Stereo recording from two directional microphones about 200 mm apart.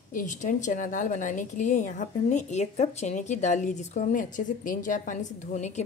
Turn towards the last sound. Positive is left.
turn(degrees=40)  # may be behind; listen again after turning